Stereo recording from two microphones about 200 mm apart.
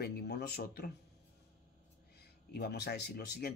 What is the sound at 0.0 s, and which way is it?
Speech, 55° left (ahead or behind).